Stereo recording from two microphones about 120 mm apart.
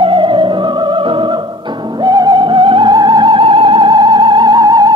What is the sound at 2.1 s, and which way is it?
Music, 35° right (ahead or behind).